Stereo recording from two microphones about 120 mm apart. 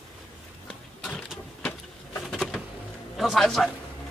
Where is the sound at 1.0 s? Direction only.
Centre (ahead or behind).